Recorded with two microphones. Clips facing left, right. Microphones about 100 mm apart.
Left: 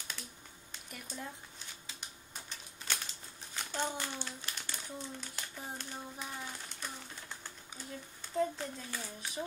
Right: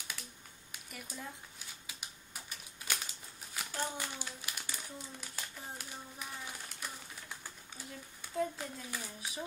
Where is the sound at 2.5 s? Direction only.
10° right (ahead or behind).